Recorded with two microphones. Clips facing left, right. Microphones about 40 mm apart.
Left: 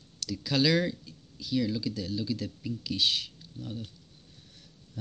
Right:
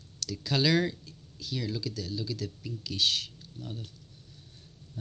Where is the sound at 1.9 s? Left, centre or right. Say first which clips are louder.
Left 3 dB; centre.